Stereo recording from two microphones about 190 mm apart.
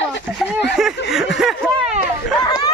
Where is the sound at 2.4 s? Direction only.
20° left (ahead or behind).